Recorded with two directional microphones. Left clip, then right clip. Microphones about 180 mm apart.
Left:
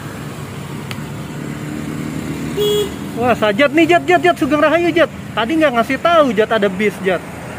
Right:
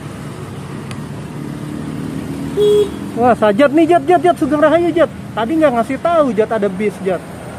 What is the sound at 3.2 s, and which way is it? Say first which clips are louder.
Speech: right 3 dB; 30° right (ahead or behind).